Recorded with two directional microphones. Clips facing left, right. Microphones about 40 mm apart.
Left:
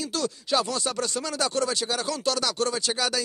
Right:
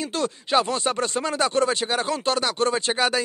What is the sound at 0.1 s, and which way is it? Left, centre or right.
Speech, right.